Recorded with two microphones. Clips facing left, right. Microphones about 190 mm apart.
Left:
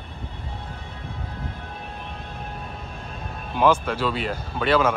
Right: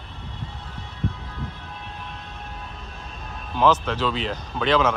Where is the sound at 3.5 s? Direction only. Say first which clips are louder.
Even; 10° left (ahead or behind).